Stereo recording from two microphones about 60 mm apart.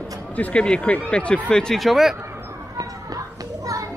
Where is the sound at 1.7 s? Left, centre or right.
Centre.